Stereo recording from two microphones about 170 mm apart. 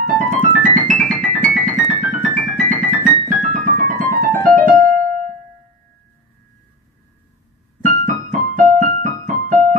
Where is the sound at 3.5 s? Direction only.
55° right (ahead or behind).